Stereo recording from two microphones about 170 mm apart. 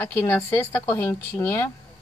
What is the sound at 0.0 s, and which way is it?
Speech, 10° left (ahead or behind).